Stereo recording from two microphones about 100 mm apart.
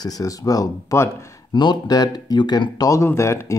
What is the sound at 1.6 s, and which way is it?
Speech, 45° left (ahead or behind).